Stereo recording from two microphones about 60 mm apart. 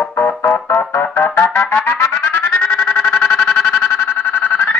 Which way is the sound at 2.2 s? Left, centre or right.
Left.